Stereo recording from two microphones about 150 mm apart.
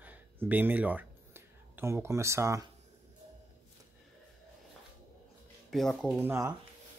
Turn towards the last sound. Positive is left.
turn(degrees=-15)  # may be behind; listen again after turning